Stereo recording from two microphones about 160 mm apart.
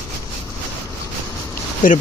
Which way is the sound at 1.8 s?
60° left (ahead or behind).